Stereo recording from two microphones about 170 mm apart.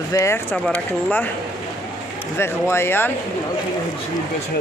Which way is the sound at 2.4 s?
15° left (ahead or behind).